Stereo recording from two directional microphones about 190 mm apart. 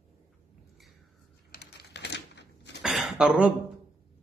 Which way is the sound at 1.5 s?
60° left (ahead or behind).